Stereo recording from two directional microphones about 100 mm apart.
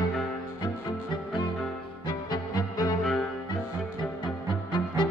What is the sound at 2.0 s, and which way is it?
Music, 40° left (ahead or behind).